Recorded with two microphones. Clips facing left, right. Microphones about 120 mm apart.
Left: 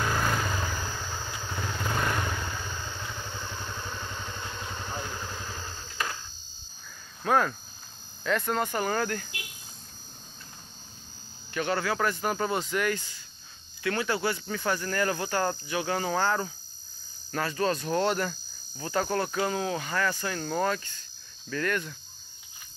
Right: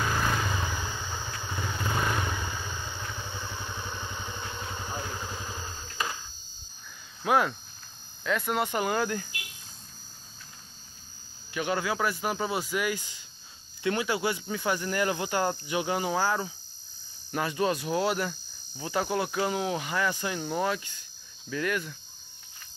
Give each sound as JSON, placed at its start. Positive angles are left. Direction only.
{"t": 0.0, "sound": "vehicle", "side_deg": 0}
{"t": 1.0, "sound": "vehicle", "side_deg": -15}
{"t": 1.5, "sound": "vehicle", "side_deg": 0}
{"t": 2.3, "sound": "vehicle", "side_deg": -15}
{"t": 3.2, "sound": "vehicle", "side_deg": 0}
{"t": 3.7, "sound": "vehicle", "side_deg": -10}
{"t": 7.2, "sound": "speech", "side_deg": -15}
{"t": 8.2, "sound": "speech", "side_deg": 0}
{"t": 11.5, "sound": "speech", "side_deg": -15}